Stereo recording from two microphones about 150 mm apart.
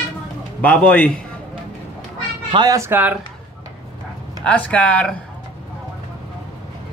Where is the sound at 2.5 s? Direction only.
25° right (ahead or behind).